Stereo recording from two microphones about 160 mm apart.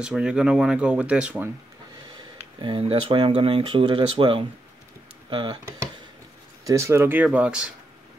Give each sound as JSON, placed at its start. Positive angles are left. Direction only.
{"t": 0.0, "sound": "speech", "side_deg": -5}
{"t": 2.6, "sound": "speech", "side_deg": -35}
{"t": 6.6, "sound": "speech", "side_deg": -20}